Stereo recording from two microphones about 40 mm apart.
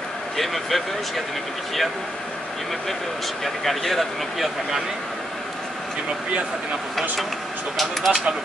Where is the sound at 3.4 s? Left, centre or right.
Centre.